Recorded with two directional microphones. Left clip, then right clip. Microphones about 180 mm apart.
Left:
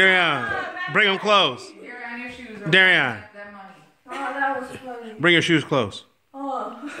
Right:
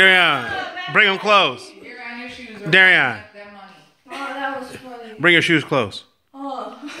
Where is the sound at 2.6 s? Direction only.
20° left (ahead or behind).